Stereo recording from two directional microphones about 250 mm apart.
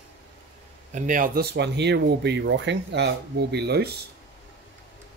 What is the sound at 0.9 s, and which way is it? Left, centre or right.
Speech, right.